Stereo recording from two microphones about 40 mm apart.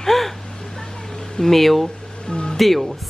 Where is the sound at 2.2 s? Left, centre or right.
Left.